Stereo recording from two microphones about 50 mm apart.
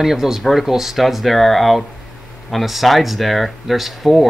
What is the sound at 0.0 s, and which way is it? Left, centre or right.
Speech, centre.